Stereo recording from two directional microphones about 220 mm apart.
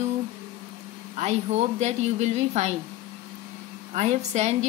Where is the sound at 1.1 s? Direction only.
30° right (ahead or behind).